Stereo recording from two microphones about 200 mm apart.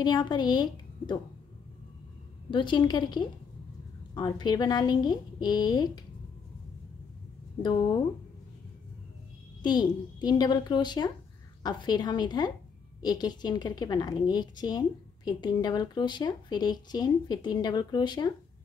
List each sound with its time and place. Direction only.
0.0 s a woman's voice: 20° left (ahead or behind)
2.5 s a woman's voice: 25° left (ahead or behind)
9.6 s a woman's voice: 20° left (ahead or behind)